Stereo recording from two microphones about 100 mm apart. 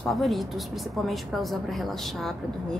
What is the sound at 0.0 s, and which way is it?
A woman's voice, centre (ahead or behind).